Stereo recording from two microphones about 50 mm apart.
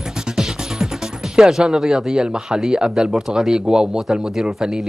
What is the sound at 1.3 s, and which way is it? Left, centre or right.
Speech, centre.